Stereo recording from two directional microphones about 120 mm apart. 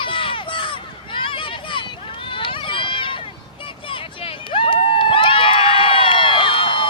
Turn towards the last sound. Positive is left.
turn(degrees=45)  # may be behind; listen again after turning